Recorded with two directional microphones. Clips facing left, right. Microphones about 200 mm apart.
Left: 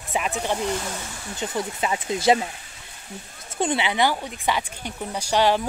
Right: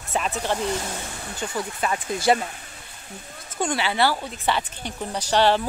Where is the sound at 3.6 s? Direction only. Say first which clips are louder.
Left 1 dB; 20° left (ahead or behind).